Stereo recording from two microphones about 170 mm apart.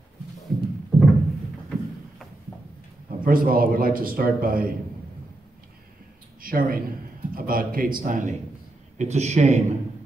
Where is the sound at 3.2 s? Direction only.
55° right (ahead or behind).